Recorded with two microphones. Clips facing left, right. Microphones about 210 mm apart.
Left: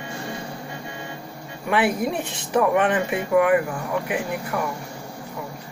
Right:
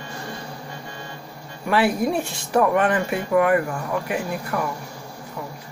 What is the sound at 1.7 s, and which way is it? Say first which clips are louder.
Speech: right 2 dB; 20° left (ahead or behind).